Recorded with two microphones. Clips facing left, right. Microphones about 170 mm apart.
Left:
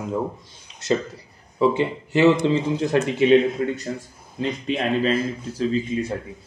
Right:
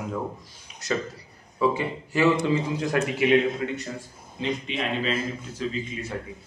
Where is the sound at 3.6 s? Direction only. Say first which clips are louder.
Left 5 dB; 35° left (ahead or behind).